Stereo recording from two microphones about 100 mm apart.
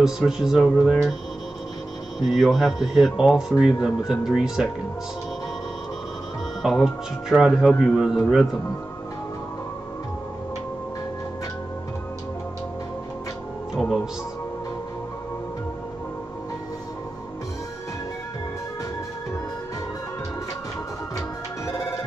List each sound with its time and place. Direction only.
0.0 s speech: 5° right (ahead or behind)
2.2 s speech: centre (ahead or behind)
6.6 s speech: 5° right (ahead or behind)
13.7 s music: centre (ahead or behind)
21.6 s music: 30° left (ahead or behind)